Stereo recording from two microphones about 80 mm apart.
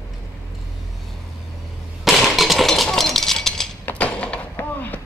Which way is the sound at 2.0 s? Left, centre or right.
Centre.